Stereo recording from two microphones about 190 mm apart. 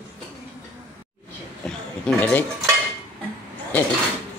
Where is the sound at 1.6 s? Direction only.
5° left (ahead or behind).